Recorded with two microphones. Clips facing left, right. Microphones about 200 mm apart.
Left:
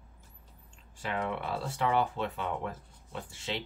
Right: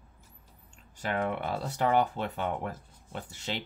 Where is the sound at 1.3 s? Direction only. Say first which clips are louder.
Right 2 dB; 45° right (ahead or behind).